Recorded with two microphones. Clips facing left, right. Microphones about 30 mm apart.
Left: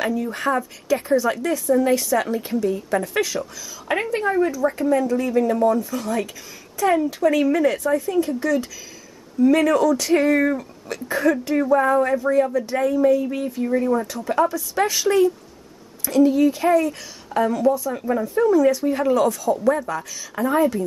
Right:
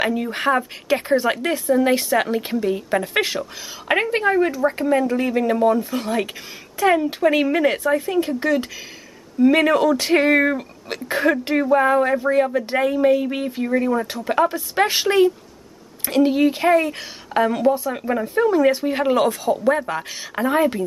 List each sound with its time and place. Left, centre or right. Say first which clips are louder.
0.0 s speech: right 2 dB; right
13.7 s speech: even; right